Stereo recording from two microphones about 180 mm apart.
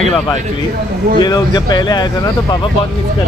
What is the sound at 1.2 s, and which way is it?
Speech, 20° left (ahead or behind).